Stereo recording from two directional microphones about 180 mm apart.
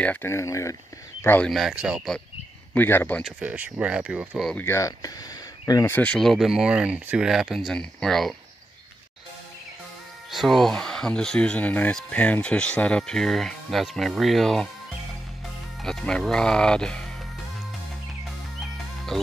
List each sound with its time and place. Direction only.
0.0 s speech: 10° left (ahead or behind)
1.5 s speech: centre (ahead or behind)
2.7 s speech: 10° left (ahead or behind)
3.3 s speech: 10° right (ahead or behind)
4.6 s speech: 15° left (ahead or behind); by 8.4 s centre (ahead or behind)
10.3 s speech: centre (ahead or behind)
15.8 s speech: 5° left (ahead or behind)